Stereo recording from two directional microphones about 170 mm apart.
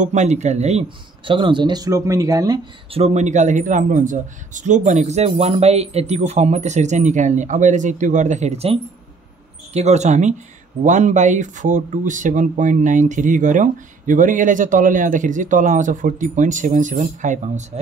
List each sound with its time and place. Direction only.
0.0 s speech: 45° right (ahead or behind); by 2.6 s 20° right (ahead or behind)
2.9 s speech: 40° right (ahead or behind)
9.8 s speech: 40° right (ahead or behind)